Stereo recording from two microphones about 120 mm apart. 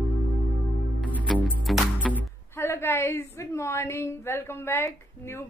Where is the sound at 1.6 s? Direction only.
Centre (ahead or behind).